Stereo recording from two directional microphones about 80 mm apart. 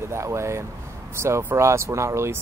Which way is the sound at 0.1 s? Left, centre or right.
Right.